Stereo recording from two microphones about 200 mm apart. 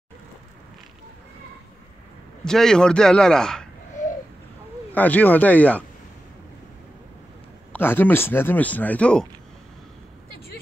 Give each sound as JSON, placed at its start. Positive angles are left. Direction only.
{"t": 2.4, "sound": "speech", "side_deg": 5}
{"t": 4.9, "sound": "speech", "side_deg": 10}
{"t": 7.7, "sound": "speech", "side_deg": 10}